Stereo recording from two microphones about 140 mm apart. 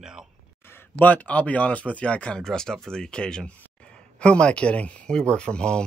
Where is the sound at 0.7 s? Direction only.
15° left (ahead or behind).